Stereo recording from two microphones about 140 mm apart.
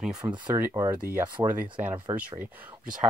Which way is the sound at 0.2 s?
20° right (ahead or behind).